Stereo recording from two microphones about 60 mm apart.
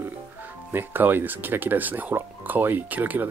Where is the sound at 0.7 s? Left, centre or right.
Right.